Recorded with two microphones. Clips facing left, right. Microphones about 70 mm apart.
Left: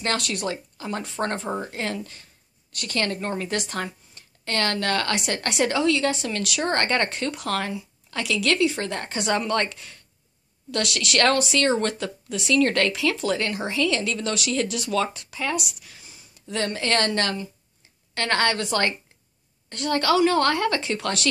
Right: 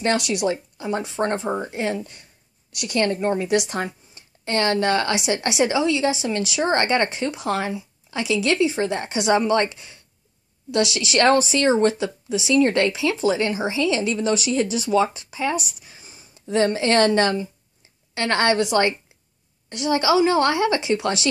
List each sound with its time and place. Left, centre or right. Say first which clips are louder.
0.0 s a woman's voice: right 5 dB; centre